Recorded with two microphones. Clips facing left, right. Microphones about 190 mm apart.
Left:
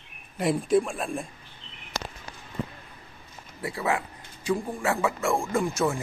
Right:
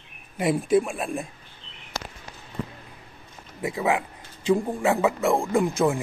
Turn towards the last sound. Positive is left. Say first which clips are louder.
# right 4 dB
turn(degrees=-15)  # may be behind; listen again after turning